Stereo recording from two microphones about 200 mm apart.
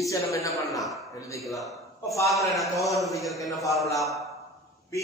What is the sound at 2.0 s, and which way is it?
Speech, 15° left (ahead or behind).